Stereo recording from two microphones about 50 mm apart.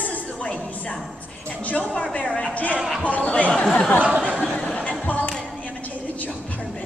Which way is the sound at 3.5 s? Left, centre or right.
Centre.